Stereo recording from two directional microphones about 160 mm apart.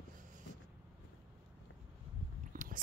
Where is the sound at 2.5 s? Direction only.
55° right (ahead or behind).